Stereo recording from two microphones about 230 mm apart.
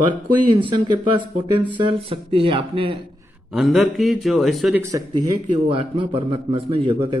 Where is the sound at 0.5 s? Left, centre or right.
Right.